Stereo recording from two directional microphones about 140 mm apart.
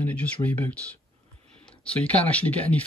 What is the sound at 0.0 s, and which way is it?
Speech, 10° left (ahead or behind).